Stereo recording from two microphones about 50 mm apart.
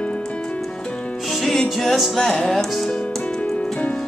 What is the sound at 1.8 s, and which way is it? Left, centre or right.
Music, centre.